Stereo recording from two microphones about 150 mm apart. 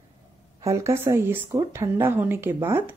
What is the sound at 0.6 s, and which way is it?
A woman's voice, 20° right (ahead or behind).